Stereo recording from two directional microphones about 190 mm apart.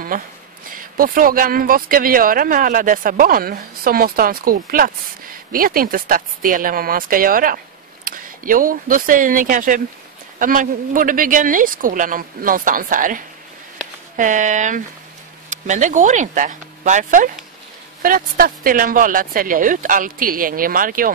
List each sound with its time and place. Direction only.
0.1 s speech: 45° right (ahead or behind)